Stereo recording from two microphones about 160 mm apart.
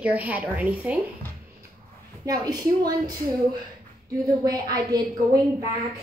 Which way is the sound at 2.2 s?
25° right (ahead or behind).